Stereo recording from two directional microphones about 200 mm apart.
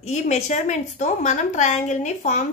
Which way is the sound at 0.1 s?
35° left (ahead or behind).